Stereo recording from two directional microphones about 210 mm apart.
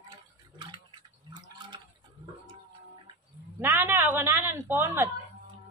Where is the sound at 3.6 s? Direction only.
10° right (ahead or behind).